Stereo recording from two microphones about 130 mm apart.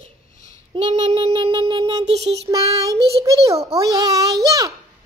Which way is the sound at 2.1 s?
55° right (ahead or behind).